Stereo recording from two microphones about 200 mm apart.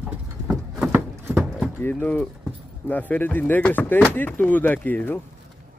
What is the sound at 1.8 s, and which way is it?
Speech, 10° left (ahead or behind).